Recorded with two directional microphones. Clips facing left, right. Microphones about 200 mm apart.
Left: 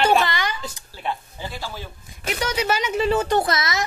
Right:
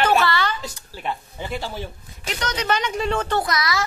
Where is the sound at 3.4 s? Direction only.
25° left (ahead or behind).